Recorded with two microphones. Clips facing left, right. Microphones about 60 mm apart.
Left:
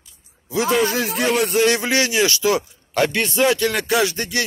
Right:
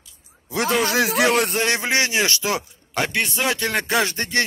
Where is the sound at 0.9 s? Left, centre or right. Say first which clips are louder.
Right 2 dB; right.